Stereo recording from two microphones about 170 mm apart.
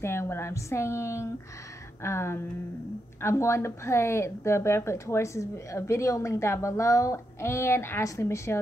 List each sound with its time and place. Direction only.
0.0 s a woman's voice: 15° left (ahead or behind)